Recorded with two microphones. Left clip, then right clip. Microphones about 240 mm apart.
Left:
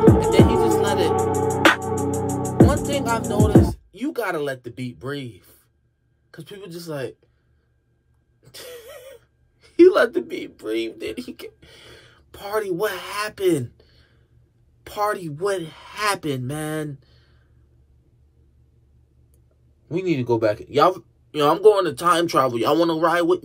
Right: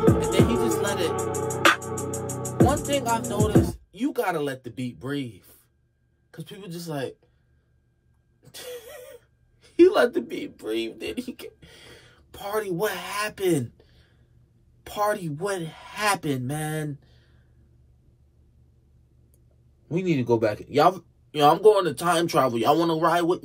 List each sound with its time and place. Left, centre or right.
0.0 s music: left
2.9 s speech: centre
8.4 s gasp: centre
14.8 s speech: centre
19.9 s speech: centre